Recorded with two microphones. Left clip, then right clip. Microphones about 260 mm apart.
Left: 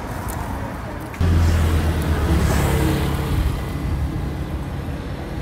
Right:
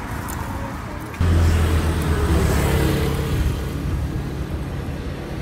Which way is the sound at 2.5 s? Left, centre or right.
Left.